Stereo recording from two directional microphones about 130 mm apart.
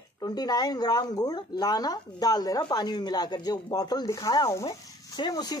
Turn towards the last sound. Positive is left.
turn(degrees=30)  # may be behind; listen again after turning